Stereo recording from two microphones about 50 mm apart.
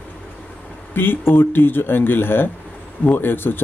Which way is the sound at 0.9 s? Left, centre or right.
Left.